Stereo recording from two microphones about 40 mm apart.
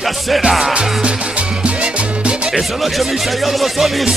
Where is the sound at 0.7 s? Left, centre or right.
Right.